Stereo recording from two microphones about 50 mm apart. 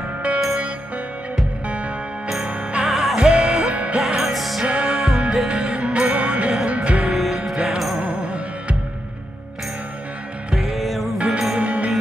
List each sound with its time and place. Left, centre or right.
2.4 s music: right
2.9 s music: centre
3.2 s music: centre
4.0 s music: centre
4.6 s music: right
8.0 s music: right
10.5 s music: centre
11.1 s music: centre
11.5 s music: right